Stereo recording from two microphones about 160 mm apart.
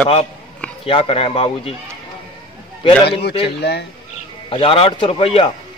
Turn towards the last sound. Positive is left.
turn(degrees=35)  # may be behind; listen again after turning